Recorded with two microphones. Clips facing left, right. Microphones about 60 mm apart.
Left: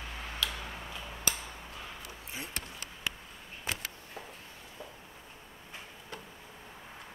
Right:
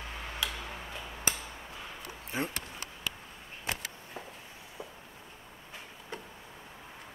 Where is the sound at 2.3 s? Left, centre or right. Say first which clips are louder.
Right 9 dB; right.